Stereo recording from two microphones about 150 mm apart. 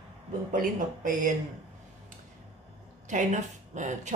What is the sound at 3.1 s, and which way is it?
A woman's voice, 55° right (ahead or behind).